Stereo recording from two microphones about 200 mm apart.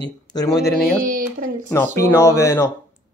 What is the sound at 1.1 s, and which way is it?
Speech, 40° right (ahead or behind).